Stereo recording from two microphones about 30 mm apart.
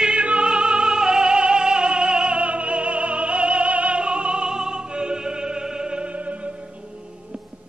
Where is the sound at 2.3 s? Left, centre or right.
Right.